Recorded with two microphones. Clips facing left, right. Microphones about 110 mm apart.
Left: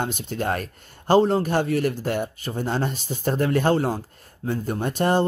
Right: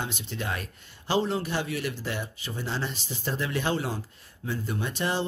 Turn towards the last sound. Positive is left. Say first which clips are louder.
# left 8 dB
turn(degrees=50)  # may be behind; listen again after turning